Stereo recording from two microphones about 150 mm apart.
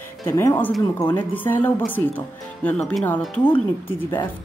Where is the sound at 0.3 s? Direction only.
15° left (ahead or behind).